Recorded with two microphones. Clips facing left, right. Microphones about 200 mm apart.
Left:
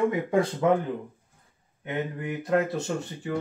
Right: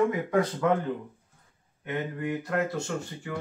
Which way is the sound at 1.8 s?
20° left (ahead or behind).